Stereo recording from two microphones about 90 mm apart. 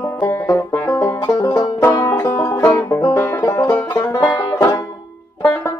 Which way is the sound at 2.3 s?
20° left (ahead or behind).